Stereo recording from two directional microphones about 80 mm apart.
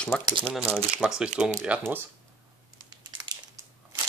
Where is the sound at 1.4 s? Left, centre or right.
Centre.